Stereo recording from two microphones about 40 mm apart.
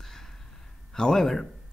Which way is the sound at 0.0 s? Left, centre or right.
Centre.